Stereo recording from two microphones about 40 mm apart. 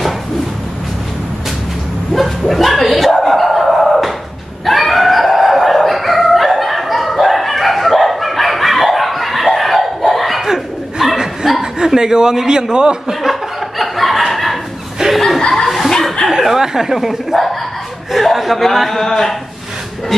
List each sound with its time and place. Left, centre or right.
2.1 s a sound: centre
4.6 s dog: centre
10.4 s chuckle: centre
13.2 s chuckle: centre
16.4 s speech: centre
18.1 s a sound: centre
18.7 s speech: centre